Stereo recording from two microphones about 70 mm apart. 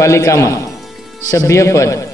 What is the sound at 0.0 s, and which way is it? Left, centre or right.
A man's voice, left.